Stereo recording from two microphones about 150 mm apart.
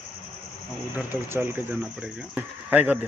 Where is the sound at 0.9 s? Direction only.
15° right (ahead or behind).